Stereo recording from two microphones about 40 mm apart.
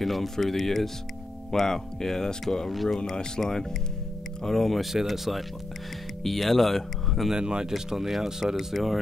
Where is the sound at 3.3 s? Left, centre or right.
Centre.